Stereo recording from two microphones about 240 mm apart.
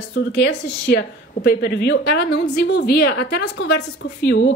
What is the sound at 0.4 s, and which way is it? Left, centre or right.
A woman's voice, left.